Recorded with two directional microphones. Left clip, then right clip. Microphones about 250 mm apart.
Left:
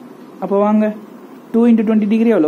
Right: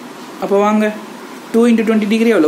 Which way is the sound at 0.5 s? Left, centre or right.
Centre.